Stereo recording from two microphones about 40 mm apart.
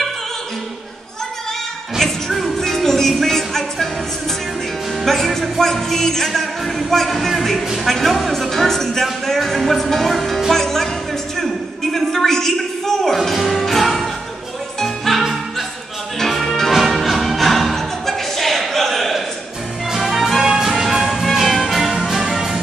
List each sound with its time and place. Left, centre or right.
2.0 s music: centre
5.0 s music: centre
7.8 s speech: centre
9.2 s music: centre
11.9 s music: centre
22.2 s music: centre